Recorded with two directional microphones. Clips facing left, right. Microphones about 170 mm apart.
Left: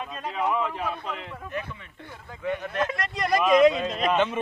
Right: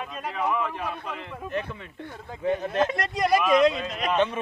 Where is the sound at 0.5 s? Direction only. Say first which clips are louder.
Left 1 dB; 15° left (ahead or behind).